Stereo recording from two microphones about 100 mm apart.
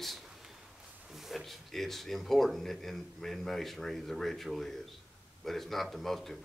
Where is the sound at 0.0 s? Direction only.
Centre (ahead or behind).